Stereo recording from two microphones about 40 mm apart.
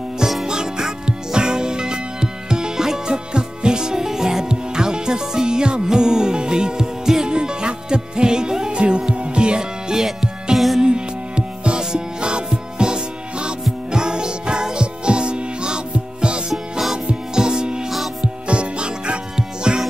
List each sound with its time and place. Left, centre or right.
0.5 s music: centre
16.7 s music: centre
17.8 s music: centre
18.2 s music: right